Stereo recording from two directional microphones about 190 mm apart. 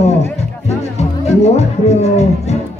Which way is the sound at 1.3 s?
35° left (ahead or behind).